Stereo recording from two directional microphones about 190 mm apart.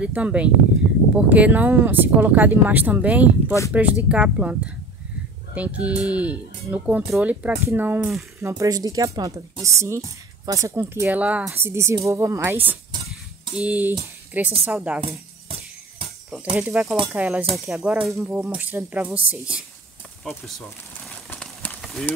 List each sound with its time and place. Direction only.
0.0 s speech: 5° right (ahead or behind)
16.5 s speech: 10° right (ahead or behind)
21.3 s run: 5° left (ahead or behind)